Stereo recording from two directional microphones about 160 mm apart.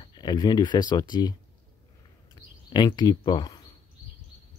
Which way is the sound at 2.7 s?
25° left (ahead or behind).